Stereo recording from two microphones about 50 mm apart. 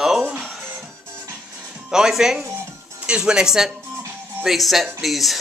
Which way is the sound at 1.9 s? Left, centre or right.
Centre.